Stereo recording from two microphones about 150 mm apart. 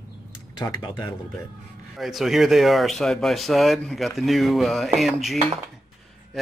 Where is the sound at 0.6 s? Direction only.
30° left (ahead or behind).